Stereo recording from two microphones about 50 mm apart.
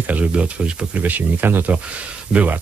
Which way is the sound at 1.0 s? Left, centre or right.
Right.